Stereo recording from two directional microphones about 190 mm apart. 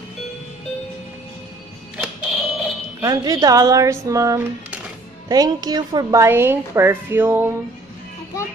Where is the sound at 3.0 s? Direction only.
20° right (ahead or behind).